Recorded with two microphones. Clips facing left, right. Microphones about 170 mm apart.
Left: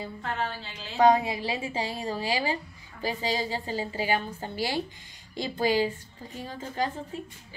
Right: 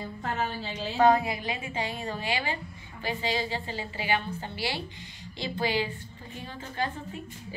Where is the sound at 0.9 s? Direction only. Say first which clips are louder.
Left 1 dB; 15° left (ahead or behind).